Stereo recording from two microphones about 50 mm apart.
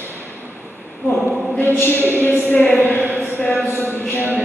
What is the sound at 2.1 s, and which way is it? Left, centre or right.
Speech, left.